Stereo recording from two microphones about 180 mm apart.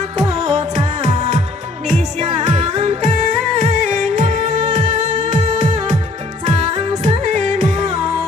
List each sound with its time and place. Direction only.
0.2 s music: 35° right (ahead or behind)